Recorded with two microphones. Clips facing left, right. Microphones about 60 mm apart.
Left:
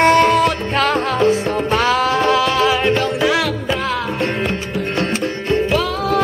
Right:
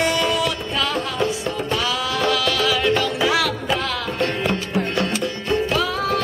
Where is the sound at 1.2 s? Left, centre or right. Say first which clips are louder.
Left 7 dB; left.